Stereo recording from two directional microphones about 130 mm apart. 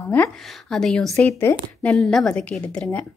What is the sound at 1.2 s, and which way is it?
Speech, 15° left (ahead or behind).